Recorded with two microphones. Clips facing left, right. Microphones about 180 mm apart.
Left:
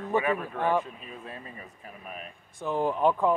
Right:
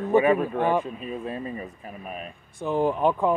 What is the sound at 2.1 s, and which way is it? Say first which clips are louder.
Speech: right 5 dB; 20° right (ahead or behind).